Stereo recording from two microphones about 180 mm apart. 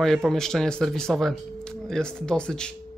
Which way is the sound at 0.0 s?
Centre (ahead or behind).